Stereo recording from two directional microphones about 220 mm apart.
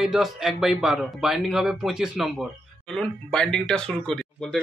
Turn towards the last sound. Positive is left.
turn(degrees=5)  # may be behind; listen again after turning